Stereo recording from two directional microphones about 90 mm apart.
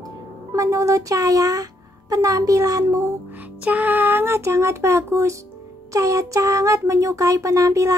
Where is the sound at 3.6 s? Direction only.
20° right (ahead or behind); by 7.9 s 35° right (ahead or behind).